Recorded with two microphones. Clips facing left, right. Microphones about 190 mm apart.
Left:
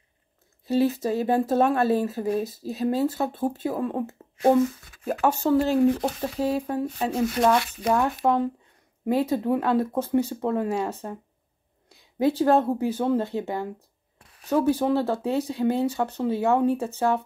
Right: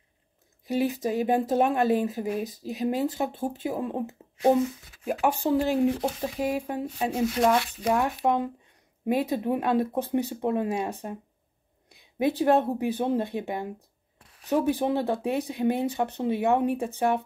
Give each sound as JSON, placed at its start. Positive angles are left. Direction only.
{"t": 0.7, "sound": "speech", "side_deg": -15}
{"t": 9.0, "sound": "speech", "side_deg": -15}